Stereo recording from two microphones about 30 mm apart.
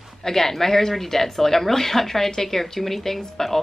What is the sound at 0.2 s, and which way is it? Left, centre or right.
Speech, centre.